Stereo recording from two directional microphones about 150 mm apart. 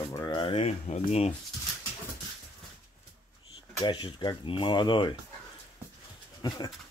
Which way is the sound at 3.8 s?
30° left (ahead or behind).